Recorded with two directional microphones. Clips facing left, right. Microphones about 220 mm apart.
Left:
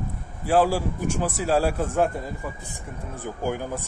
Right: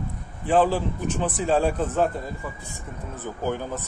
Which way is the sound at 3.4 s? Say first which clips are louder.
Even; 10° left (ahead or behind).